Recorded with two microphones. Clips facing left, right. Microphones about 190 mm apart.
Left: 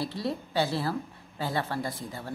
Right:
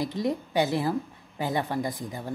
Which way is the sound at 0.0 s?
15° right (ahead or behind).